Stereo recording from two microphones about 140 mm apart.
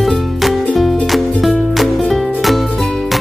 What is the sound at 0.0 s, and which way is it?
Music, centre (ahead or behind).